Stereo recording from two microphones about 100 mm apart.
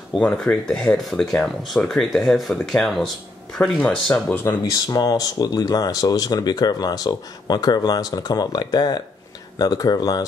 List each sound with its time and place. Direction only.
0.2 s speech: 10° left (ahead or behind)
4.7 s speech: 40° left (ahead or behind)